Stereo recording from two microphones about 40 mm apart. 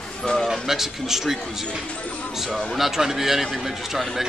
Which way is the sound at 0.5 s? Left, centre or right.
Centre.